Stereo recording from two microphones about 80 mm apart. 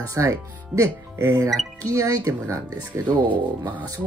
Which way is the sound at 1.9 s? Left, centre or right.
Right.